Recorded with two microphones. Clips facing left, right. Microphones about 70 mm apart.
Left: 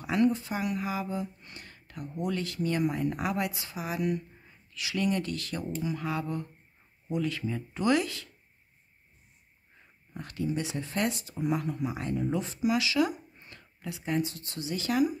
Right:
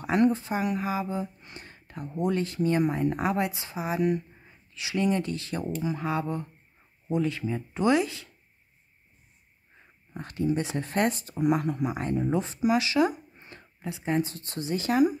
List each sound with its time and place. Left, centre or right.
0.0 s speech: right
10.1 s speech: right
10.8 s speech: right
12.0 s speech: right